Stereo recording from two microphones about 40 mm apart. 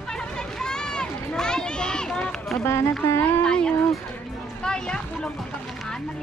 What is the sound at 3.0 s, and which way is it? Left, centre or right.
Speech, left.